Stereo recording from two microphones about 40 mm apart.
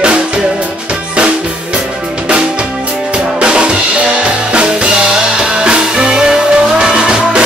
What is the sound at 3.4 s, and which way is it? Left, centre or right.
Music, right.